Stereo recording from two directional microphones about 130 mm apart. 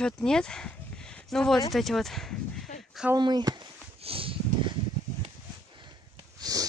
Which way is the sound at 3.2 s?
35° right (ahead or behind).